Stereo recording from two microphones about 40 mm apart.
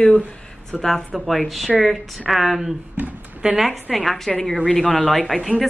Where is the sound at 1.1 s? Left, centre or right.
Centre.